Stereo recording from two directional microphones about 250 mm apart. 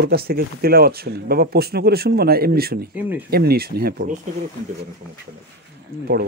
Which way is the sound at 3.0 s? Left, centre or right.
Centre.